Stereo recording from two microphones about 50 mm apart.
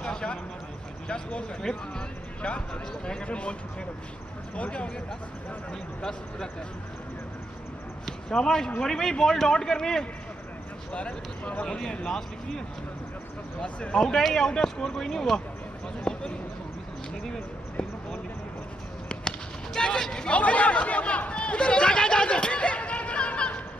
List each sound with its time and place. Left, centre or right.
0.0 s a sound: centre
1.0 s speech: centre
4.6 s speech: left
8.3 s speech: centre
10.9 s speech: left
13.6 s speech: left
13.9 s speech: centre
16.0 s a sound: centre
19.8 s speech: centre
20.3 s chatter: left